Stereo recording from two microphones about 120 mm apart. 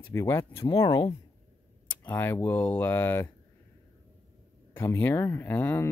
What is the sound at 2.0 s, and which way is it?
Speech, 20° left (ahead or behind).